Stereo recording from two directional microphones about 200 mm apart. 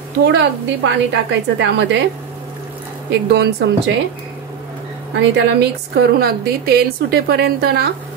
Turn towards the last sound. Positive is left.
turn(degrees=-55)  # may be behind; listen again after turning